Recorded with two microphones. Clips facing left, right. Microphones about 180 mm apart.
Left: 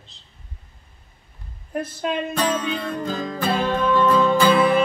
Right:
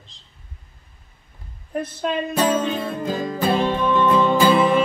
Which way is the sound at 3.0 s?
20° right (ahead or behind).